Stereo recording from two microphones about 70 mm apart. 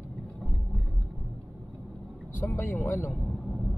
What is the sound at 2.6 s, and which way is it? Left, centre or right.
Speech, left.